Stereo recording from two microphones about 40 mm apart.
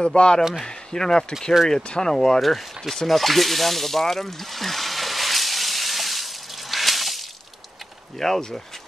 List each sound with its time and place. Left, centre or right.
0.0 s speech: left
2.1 s a sound: centre
8.2 s speech: centre